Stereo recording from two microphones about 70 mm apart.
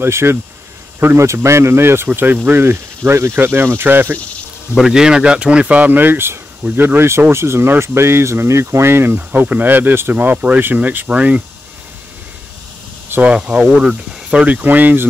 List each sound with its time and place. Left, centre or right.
0.0 s speech: right
4.7 s speech: centre
13.2 s speech: centre